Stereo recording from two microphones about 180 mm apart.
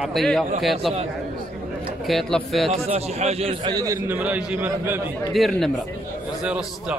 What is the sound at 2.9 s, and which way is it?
A man's voice, 35° right (ahead or behind).